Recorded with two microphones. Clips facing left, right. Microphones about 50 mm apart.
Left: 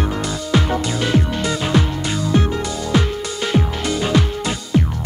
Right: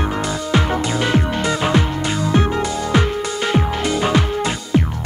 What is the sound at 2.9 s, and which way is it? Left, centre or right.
Music, right.